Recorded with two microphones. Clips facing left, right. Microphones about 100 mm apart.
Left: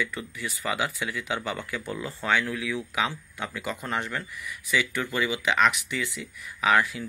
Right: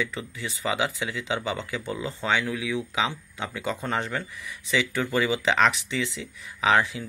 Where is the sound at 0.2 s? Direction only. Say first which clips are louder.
Right 2 dB; 20° right (ahead or behind).